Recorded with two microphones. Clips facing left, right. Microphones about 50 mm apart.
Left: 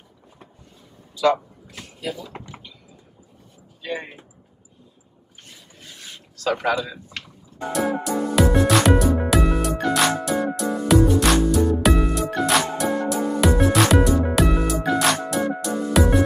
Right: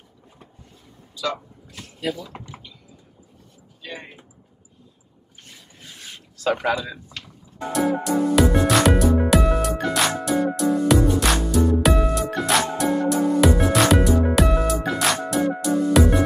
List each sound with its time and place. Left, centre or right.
2.1 s a sound: centre
3.8 s speech: centre
6.4 s speech: centre
7.7 s music: centre